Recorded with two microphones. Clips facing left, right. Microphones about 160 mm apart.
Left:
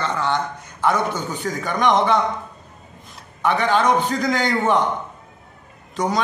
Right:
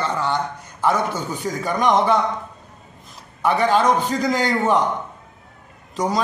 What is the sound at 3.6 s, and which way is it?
A man's voice, 5° right (ahead or behind).